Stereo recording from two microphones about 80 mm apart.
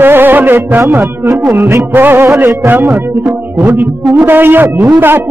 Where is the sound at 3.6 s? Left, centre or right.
Centre.